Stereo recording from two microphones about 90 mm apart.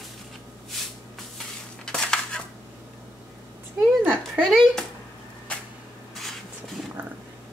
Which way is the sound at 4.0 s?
20° right (ahead or behind).